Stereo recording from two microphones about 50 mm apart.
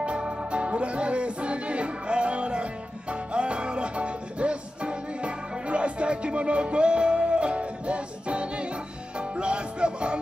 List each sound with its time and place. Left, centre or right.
0.0 s music: right